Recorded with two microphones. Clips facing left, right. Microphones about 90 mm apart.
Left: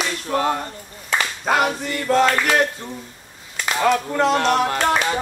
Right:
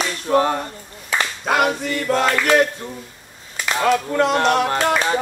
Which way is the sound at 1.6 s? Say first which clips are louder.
Right 2 dB; 40° right (ahead or behind).